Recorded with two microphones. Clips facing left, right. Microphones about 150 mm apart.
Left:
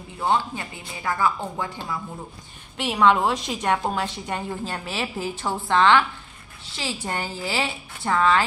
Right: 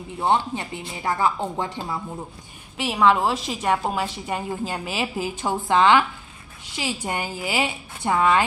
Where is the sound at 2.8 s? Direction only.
5° right (ahead or behind).